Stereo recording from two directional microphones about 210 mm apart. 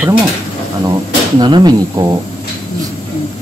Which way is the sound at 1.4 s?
20° right (ahead or behind).